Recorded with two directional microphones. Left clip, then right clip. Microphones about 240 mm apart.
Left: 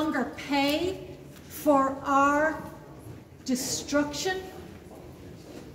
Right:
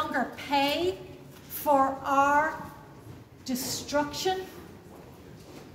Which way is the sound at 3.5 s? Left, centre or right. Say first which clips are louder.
Left 2 dB; centre.